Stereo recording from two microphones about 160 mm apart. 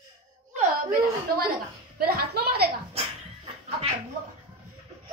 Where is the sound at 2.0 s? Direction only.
75° right (ahead or behind).